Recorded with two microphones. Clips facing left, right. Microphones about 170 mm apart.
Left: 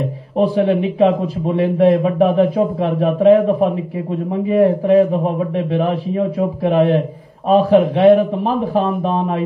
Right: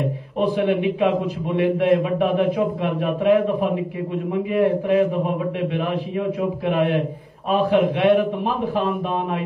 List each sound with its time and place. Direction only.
0.4 s a man's voice: 35° left (ahead or behind)